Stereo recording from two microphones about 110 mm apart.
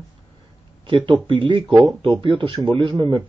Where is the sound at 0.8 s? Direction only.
50° right (ahead or behind).